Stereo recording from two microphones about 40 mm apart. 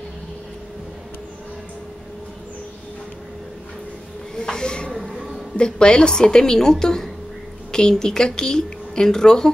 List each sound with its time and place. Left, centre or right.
4.4 s speech: centre
4.9 s a sound: centre
5.6 s a woman's voice: left